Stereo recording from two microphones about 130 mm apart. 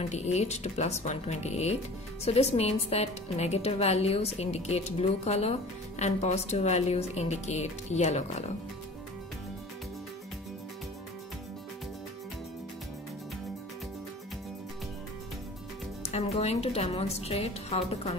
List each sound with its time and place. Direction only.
0.0 s a woman's voice: 60° left (ahead or behind)
16.0 s a woman's voice: 55° left (ahead or behind)